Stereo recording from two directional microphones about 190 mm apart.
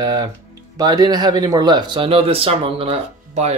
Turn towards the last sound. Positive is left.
turn(degrees=-30)  # may be behind; listen again after turning